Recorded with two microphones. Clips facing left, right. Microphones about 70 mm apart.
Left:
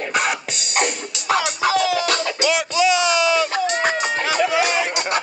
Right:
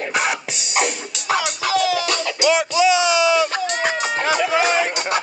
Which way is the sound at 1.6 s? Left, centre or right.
Left.